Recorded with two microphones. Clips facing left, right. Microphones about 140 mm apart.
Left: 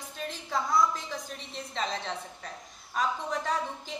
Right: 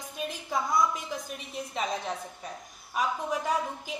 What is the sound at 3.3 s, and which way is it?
Speech, 10° right (ahead or behind).